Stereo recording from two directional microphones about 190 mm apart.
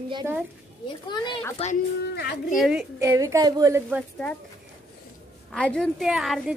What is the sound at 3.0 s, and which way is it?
A woman's voice, 15° right (ahead or behind).